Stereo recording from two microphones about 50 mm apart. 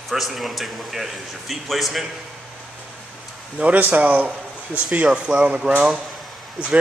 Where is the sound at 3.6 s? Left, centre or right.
Right.